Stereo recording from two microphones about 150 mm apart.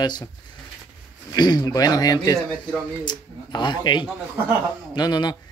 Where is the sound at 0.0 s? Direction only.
30° left (ahead or behind).